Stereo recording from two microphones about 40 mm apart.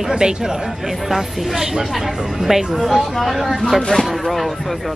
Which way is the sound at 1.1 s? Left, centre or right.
Centre.